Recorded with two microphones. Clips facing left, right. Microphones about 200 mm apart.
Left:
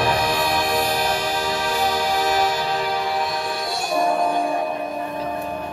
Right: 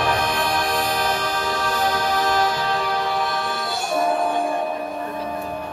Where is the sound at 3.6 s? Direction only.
Centre (ahead or behind).